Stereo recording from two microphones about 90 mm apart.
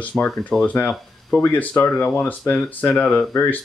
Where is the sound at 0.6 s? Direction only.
20° left (ahead or behind).